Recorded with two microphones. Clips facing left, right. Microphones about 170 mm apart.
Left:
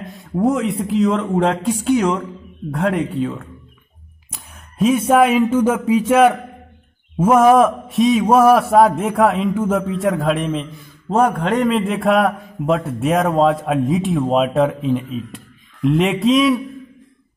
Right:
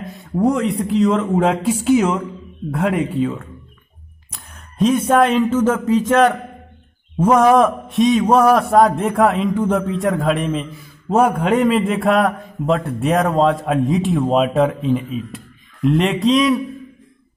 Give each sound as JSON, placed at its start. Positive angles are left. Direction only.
{"t": 0.1, "sound": "a man's voice", "side_deg": 0}